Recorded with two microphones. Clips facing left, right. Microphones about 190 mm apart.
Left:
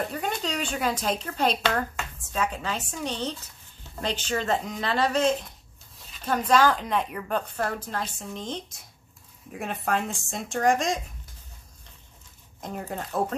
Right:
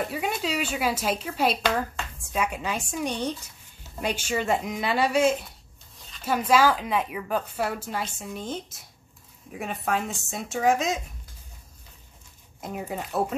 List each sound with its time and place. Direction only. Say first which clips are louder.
0.1 s a woman's voice: right 2 dB; 5° right (ahead or behind)
12.5 s a woman's voice: right 1 dB; 5° right (ahead or behind)